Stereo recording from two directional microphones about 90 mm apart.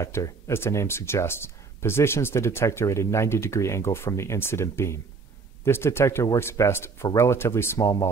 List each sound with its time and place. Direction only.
0.0 s speech: 30° left (ahead or behind)